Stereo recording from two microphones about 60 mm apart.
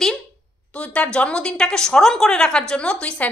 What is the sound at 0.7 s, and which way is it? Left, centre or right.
A woman's voice, left.